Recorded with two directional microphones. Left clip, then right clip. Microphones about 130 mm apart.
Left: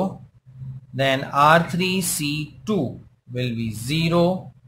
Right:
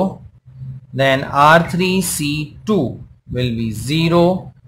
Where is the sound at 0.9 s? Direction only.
15° right (ahead or behind).